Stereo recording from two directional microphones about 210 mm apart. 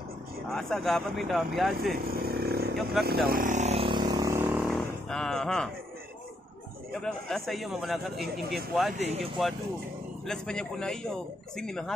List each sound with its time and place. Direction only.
0.5 s a man's voice: centre (ahead or behind)
2.0 s a sound: 45° right (ahead or behind)
2.7 s speech: centre (ahead or behind)
3.1 s vehicle: 45° right (ahead or behind); by 4.6 s 10° right (ahead or behind)
4.6 s a sound: centre (ahead or behind)
6.9 s a man's voice: centre (ahead or behind)
8.9 s speech: 30° right (ahead or behind)
10.2 s a man's voice: centre (ahead or behind)